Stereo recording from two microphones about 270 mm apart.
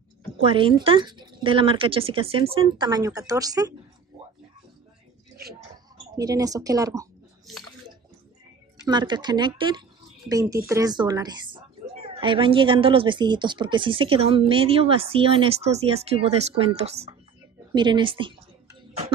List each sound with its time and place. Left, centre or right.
0.5 s a woman's voice: centre
6.1 s speech: centre
8.8 s a woman's voice: centre
17.7 s a sound: centre